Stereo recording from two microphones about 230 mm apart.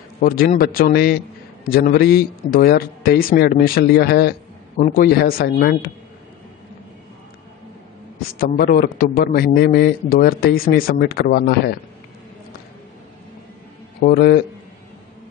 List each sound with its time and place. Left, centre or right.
0.2 s a man's voice: left
8.4 s a man's voice: left
14.1 s a man's voice: left